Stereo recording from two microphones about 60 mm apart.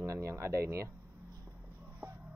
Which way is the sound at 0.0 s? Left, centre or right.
Right.